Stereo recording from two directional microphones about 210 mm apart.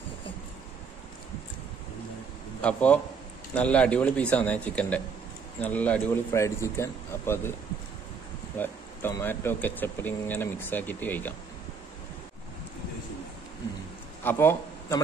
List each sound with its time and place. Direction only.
2.6 s speech: 5° left (ahead or behind)
8.5 s speech: 10° left (ahead or behind)
14.2 s speech: 10° left (ahead or behind)